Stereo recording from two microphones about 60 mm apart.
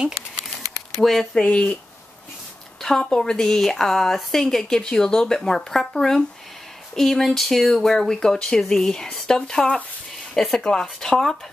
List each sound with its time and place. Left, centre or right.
1.0 s speech: centre
1.4 s speech: centre
2.8 s a woman's voice: centre